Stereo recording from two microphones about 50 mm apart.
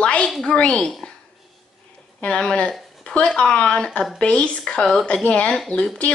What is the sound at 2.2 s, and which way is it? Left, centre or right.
A woman's voice, left.